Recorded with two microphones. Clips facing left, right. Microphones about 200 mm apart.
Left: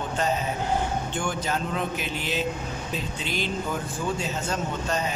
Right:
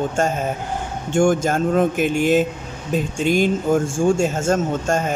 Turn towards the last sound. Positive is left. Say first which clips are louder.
# right 7 dB
turn(degrees=-50)  # may be behind; listen again after turning